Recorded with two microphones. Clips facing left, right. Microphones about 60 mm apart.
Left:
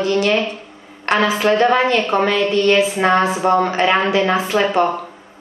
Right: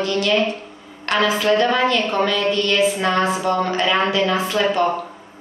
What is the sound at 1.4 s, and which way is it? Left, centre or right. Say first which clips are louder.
A woman's voice: left 3 dB; left.